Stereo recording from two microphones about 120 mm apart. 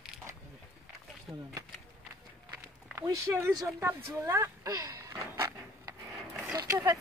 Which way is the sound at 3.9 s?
20° right (ahead or behind).